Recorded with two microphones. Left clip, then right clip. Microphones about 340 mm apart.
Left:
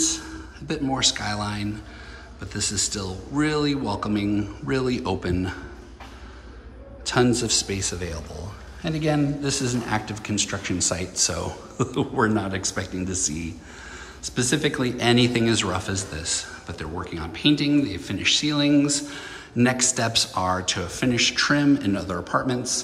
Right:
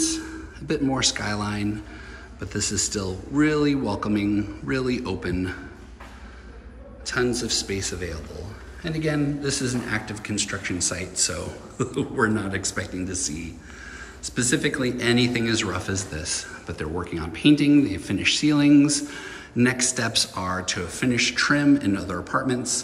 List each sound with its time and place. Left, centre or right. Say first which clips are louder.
0.7 s speech: even; centre
7.1 s speech: left 3 dB; centre